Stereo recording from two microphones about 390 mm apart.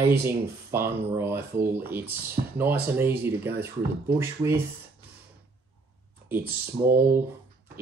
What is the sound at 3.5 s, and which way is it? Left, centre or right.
Speech, right.